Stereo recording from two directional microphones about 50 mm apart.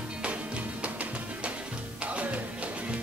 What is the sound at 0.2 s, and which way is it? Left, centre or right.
Music, right.